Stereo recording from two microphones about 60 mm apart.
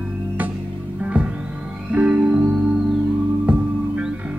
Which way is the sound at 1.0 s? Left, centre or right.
Right.